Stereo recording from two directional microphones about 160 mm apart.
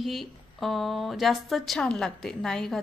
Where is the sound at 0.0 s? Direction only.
Centre (ahead or behind).